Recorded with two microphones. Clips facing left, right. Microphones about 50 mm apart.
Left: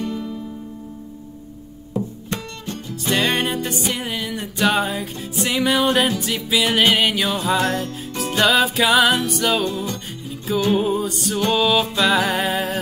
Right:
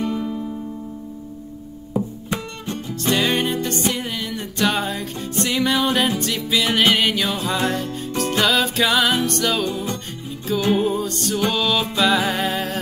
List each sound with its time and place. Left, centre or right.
0.0 s music: centre
2.2 s music: centre
3.1 s music: centre
9.7 s music: centre
10.7 s music: centre